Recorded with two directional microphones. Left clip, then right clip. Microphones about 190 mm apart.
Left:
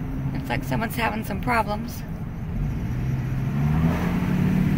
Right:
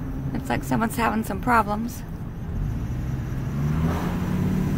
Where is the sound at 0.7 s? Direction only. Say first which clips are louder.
Right 3 dB; 15° right (ahead or behind).